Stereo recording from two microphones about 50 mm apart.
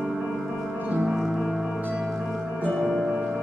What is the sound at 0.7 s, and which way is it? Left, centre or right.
Music, right.